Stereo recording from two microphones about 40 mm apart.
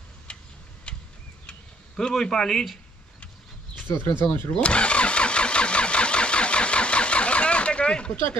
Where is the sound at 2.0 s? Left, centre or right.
Centre.